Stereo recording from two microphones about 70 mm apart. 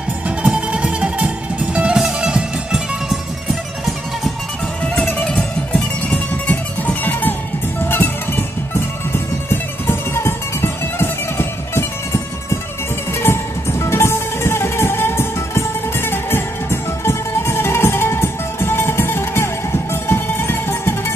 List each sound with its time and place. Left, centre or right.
0.4 s music: centre
4.8 s music: centre; by 20.9 s left